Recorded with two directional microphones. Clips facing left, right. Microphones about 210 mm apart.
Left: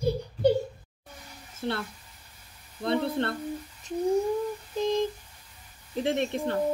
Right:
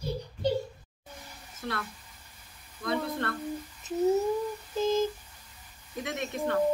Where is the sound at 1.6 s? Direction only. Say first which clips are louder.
Left 5 dB; 30° left (ahead or behind).